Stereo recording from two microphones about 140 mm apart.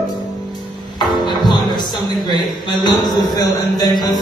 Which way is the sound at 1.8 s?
30° left (ahead or behind).